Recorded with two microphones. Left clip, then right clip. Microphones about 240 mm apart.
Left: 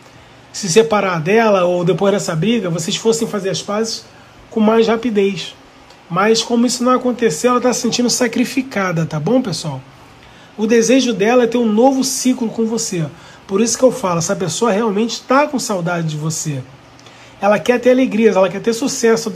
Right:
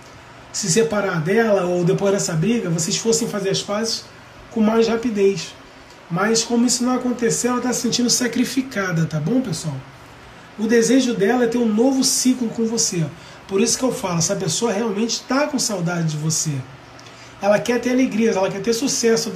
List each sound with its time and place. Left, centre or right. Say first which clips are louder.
0.9 s speech: left 5 dB; centre
7.9 s speech: left 4 dB; centre
10.7 s speech: left 4 dB; centre
12.4 s speech: left 3 dB; centre
17.8 s speech: left 7 dB; centre